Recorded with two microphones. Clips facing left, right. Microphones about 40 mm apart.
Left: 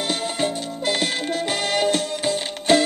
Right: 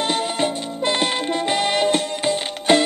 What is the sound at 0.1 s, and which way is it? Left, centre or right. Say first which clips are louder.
Music: right 2 dB; right.